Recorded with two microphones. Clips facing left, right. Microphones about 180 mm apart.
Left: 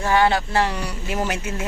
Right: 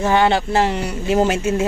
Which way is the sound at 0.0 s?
25° right (ahead or behind).